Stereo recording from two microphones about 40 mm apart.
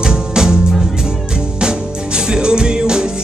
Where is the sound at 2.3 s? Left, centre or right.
Right.